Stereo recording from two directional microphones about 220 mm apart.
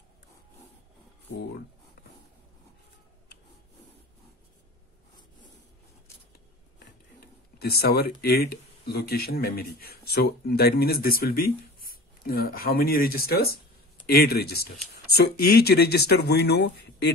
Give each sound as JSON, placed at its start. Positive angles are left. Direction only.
{"t": 7.2, "sound": "speech", "side_deg": 45}